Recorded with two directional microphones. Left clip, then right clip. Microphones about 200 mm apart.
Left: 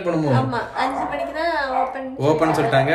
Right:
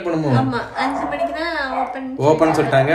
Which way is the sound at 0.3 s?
25° left (ahead or behind).